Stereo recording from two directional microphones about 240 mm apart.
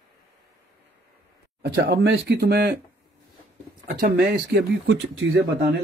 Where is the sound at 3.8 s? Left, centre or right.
Right.